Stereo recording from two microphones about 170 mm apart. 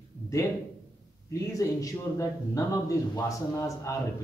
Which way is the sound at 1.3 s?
20° left (ahead or behind).